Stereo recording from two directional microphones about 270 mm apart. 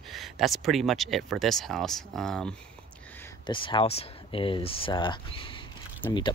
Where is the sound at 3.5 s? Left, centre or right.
Centre.